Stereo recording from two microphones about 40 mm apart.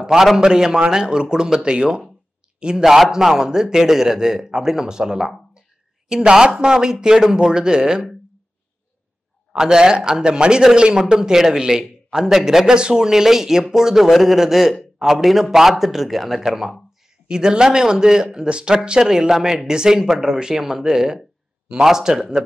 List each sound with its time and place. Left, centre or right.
0.4 s speech: centre
2.8 s a man's voice: centre
9.5 s a man's voice: centre
17.3 s a man's voice: centre